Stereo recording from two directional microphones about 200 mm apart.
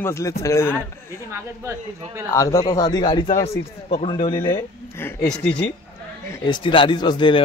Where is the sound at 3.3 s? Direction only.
35° left (ahead or behind).